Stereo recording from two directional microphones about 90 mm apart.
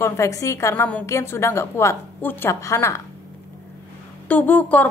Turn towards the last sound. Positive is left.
turn(degrees=20)  # may be behind; listen again after turning